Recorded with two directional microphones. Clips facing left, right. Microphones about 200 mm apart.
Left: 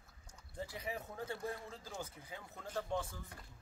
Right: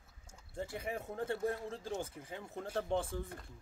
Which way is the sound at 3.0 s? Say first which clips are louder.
Right 8 dB; 55° right (ahead or behind).